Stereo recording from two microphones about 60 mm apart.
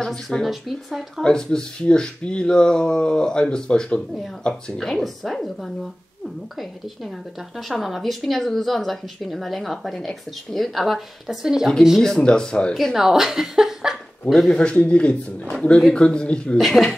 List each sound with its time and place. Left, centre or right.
0.0 s speech: centre
0.5 s speech: centre
1.2 s speech: centre
7.5 s speech: centre
12.0 s speech: centre
12.9 s a woman's voice: centre
14.5 s speech: centre
16.5 s speech: centre